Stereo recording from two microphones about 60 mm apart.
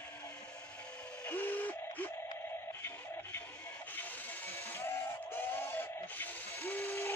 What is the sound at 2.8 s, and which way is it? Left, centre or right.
Music, left.